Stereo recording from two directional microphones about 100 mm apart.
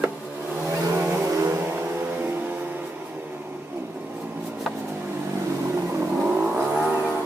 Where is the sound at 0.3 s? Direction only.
20° right (ahead or behind).